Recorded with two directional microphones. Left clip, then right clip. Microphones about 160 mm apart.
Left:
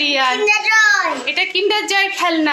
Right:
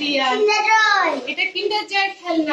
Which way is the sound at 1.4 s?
15° left (ahead or behind).